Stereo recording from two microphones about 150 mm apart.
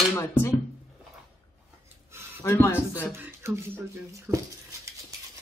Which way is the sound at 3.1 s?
15° right (ahead or behind).